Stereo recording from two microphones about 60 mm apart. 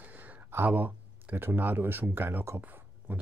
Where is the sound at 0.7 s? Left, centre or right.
Right.